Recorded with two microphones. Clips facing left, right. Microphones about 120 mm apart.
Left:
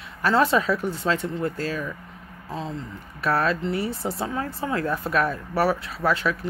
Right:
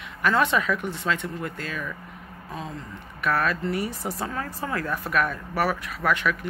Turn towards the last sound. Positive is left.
turn(degrees=30)  # may be behind; listen again after turning